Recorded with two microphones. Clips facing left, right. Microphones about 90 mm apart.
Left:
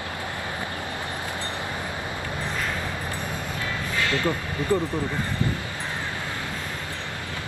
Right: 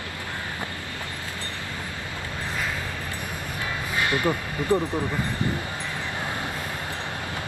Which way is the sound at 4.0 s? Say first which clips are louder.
Right 1 dB; 20° right (ahead or behind).